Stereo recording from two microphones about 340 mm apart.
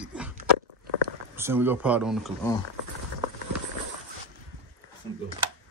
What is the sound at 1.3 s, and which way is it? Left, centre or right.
Speech, centre.